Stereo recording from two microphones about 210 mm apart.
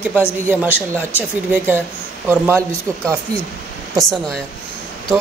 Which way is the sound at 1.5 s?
10° right (ahead or behind).